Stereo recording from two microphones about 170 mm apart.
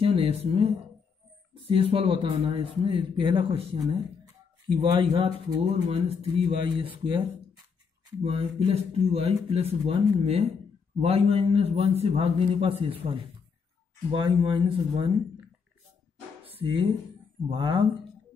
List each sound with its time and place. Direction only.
0.0 s speech: 35° right (ahead or behind)
1.7 s speech: 35° right (ahead or behind)
16.5 s speech: 30° right (ahead or behind)